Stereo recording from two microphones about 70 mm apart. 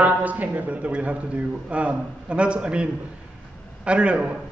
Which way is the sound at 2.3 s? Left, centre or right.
Centre.